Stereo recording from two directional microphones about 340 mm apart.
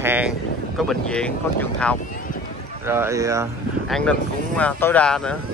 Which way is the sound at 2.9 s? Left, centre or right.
Centre.